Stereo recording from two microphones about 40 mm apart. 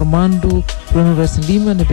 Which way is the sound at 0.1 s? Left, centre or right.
Centre.